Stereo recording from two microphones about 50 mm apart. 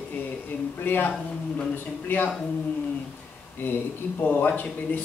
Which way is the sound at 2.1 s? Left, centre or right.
Left.